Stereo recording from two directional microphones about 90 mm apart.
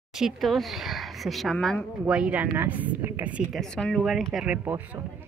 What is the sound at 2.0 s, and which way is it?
Speech, 10° right (ahead or behind).